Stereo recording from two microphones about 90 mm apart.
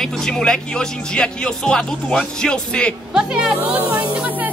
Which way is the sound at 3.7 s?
15° right (ahead or behind).